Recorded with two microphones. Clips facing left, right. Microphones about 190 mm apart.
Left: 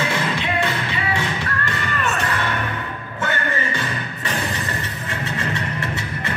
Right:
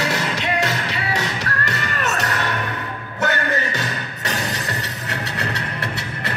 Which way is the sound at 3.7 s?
40° right (ahead or behind).